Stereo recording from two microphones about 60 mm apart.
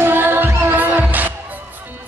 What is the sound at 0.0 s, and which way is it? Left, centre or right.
Music, right.